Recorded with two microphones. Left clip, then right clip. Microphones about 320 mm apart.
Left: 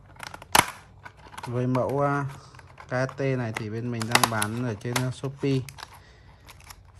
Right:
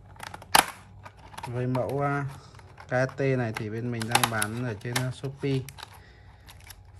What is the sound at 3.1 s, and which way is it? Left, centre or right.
Speech, centre.